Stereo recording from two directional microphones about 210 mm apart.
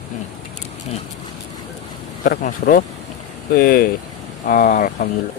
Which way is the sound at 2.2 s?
40° left (ahead or behind).